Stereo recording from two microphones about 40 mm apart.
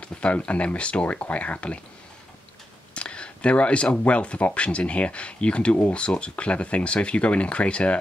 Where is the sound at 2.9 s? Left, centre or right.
Left.